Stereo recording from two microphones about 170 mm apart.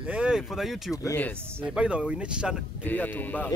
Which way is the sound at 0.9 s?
15° left (ahead or behind).